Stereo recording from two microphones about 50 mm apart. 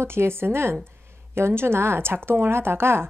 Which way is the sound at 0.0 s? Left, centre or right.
Right.